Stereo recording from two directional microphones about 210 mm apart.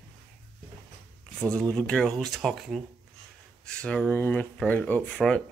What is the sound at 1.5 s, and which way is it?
Speech, 5° left (ahead or behind).